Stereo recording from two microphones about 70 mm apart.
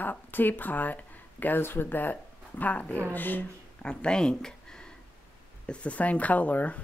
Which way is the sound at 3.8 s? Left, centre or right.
Centre.